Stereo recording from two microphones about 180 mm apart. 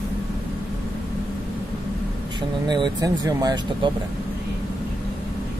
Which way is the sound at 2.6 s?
25° right (ahead or behind).